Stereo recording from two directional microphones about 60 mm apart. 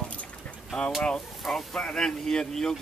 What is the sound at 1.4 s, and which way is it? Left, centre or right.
Speech, centre.